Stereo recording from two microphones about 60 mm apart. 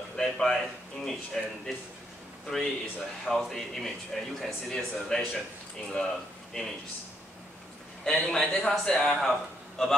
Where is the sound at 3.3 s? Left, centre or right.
Centre.